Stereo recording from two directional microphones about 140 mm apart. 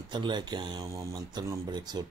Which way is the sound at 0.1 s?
35° right (ahead or behind).